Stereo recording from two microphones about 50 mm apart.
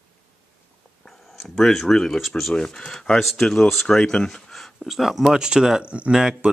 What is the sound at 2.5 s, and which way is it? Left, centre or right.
Speech, centre.